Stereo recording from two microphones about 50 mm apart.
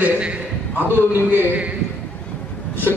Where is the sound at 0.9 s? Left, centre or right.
Right.